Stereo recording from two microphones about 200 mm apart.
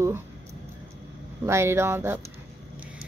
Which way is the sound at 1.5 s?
15° right (ahead or behind).